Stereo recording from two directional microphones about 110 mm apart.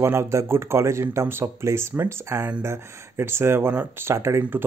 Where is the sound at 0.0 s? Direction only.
25° right (ahead or behind).